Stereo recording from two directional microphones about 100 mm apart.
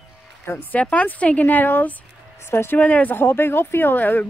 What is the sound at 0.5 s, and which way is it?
Speech, 15° left (ahead or behind).